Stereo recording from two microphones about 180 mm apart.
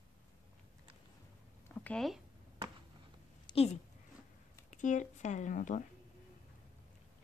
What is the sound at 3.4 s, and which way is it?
Speech, 35° left (ahead or behind).